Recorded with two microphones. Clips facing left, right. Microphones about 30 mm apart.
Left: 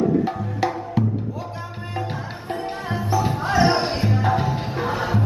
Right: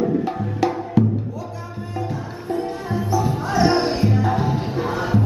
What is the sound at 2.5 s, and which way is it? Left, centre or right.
Music, left.